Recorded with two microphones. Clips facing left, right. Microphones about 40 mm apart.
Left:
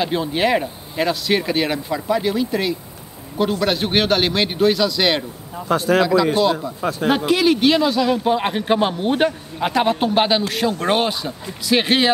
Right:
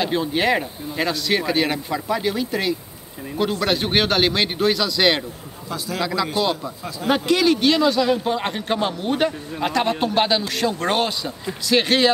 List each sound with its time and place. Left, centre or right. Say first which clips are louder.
0.0 s speech: left 1 dB; centre
5.7 s speech: left 9 dB; left
7.2 s a man's voice: left 1 dB; centre